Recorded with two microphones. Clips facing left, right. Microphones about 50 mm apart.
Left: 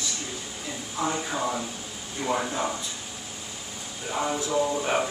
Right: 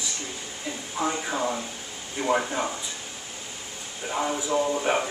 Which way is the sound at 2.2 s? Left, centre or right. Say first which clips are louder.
Right 3 dB; right.